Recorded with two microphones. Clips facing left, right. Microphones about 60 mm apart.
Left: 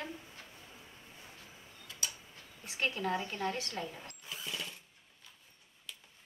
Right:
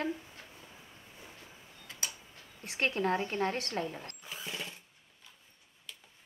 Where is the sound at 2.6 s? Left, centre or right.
Right.